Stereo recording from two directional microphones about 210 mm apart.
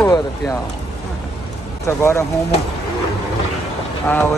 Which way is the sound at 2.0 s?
15° left (ahead or behind).